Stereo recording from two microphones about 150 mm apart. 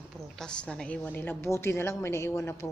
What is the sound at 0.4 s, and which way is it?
A woman's voice, 5° left (ahead or behind).